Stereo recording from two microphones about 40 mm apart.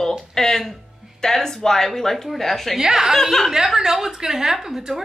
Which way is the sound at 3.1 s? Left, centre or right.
Centre.